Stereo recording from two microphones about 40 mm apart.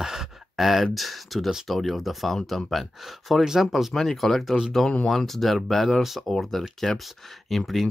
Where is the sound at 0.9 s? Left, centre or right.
Centre.